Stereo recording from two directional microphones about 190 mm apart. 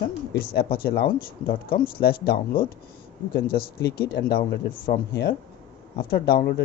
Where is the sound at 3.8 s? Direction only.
55° left (ahead or behind).